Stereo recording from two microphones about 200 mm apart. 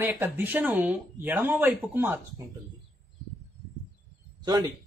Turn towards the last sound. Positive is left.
turn(degrees=-20)  # may be behind; listen again after turning